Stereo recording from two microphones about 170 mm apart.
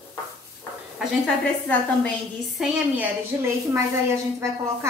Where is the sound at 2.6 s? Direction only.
10° right (ahead or behind).